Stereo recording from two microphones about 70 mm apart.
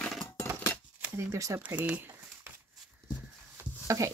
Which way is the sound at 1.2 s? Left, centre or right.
Right.